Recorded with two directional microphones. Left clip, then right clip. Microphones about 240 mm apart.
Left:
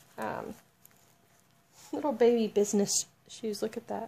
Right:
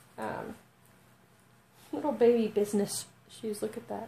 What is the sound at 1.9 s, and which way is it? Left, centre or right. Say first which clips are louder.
A woman's voice: even; left.